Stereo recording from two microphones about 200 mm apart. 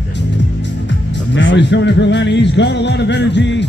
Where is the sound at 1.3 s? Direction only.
65° left (ahead or behind).